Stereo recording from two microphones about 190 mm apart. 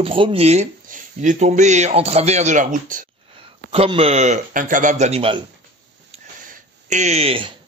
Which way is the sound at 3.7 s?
30° right (ahead or behind).